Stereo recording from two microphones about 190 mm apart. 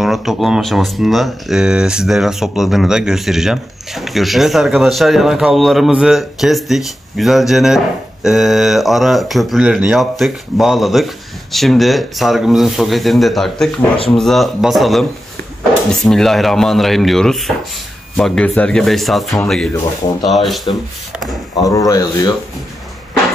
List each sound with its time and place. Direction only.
0.0 s speech: centre (ahead or behind)
21.6 s speech: 15° left (ahead or behind)